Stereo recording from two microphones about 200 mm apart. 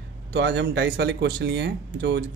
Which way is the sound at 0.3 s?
60° right (ahead or behind).